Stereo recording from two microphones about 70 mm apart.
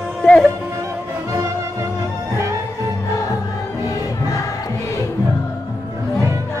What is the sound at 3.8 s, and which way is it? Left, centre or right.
Music, left.